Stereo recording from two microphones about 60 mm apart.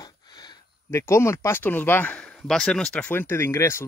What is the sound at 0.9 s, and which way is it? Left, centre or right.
Speech, left.